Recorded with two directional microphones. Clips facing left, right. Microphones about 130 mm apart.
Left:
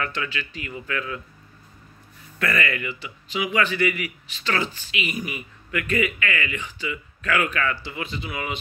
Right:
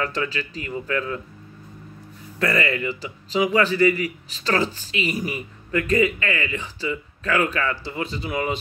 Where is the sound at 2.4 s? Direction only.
30° right (ahead or behind).